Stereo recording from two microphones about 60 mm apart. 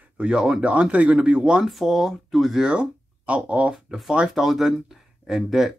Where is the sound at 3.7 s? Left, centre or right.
Centre.